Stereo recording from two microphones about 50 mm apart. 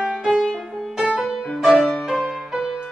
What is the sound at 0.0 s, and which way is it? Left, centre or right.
Music, centre.